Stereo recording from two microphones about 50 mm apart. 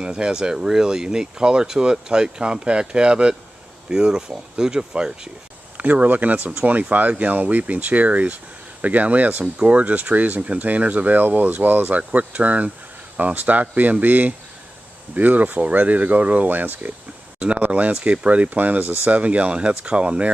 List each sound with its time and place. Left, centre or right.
0.0 s speech: centre
5.8 s speech: right
17.4 s speech: right